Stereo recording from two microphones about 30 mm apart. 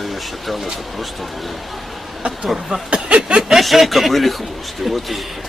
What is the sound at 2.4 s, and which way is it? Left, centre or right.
Speech, centre.